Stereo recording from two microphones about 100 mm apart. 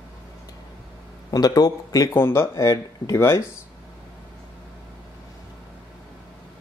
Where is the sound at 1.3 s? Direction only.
40° left (ahead or behind).